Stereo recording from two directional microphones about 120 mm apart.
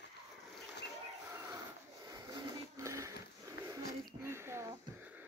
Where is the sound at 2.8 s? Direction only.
25° right (ahead or behind).